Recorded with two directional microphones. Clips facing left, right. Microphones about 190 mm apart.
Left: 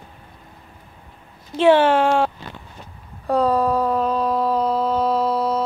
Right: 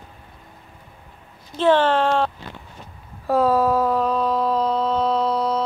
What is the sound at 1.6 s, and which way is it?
Speech, 10° left (ahead or behind).